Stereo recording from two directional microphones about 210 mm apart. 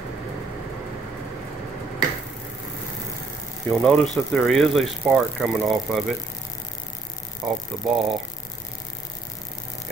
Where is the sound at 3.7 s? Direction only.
5° left (ahead or behind).